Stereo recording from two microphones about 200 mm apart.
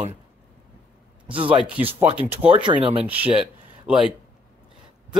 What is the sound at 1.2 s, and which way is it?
Speech, 25° right (ahead or behind).